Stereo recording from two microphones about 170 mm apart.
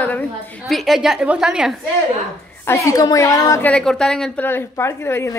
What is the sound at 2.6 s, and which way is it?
A woman's voice, 20° left (ahead or behind).